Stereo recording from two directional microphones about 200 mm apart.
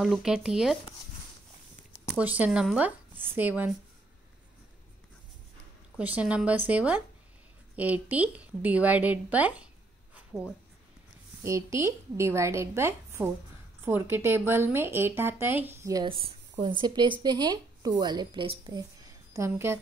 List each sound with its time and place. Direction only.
0.0 s speech: centre (ahead or behind)
1.9 s a woman's voice: 5° right (ahead or behind)
5.9 s a woman's voice: 5° right (ahead or behind)
11.4 s a woman's voice: 15° right (ahead or behind)